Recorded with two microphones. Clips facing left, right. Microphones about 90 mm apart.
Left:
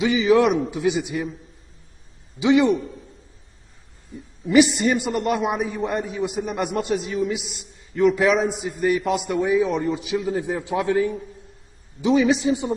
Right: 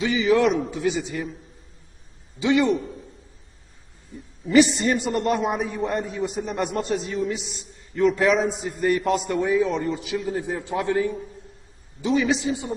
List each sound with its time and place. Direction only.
0.0 s a man's voice: 20° left (ahead or behind)
2.3 s a man's voice: 20° left (ahead or behind)
4.6 s a man's voice: centre (ahead or behind)
12.4 s a man's voice: 20° left (ahead or behind)